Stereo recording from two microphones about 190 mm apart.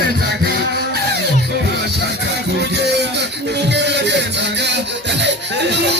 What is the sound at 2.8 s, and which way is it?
Music, 65° right (ahead or behind).